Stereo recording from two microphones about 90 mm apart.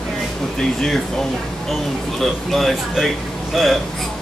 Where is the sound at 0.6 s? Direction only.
5° left (ahead or behind).